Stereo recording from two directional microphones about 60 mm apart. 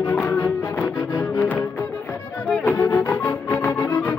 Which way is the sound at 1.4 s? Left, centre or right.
Left.